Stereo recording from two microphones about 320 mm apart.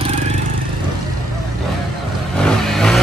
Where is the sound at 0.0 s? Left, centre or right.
Centre.